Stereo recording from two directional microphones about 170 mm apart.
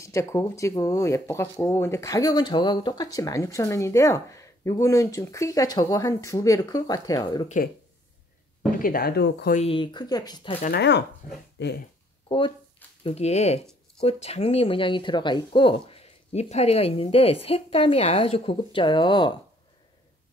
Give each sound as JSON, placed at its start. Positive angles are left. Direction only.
{"t": 0.0, "sound": "speech", "side_deg": 15}
{"t": 7.4, "sound": "speech", "side_deg": 50}
{"t": 8.7, "sound": "speech", "side_deg": 55}
{"t": 9.6, "sound": "speech", "side_deg": 30}
{"t": 10.7, "sound": "speech", "side_deg": 85}
{"t": 12.3, "sound": "speech", "side_deg": 30}